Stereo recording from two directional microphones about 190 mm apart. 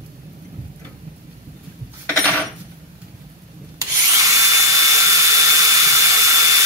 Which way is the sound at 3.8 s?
15° right (ahead or behind).